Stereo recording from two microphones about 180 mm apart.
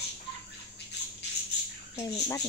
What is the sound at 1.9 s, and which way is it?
Speech, 15° left (ahead or behind).